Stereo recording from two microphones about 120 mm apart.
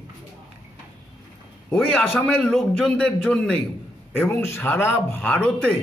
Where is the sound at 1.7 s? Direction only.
10° left (ahead or behind).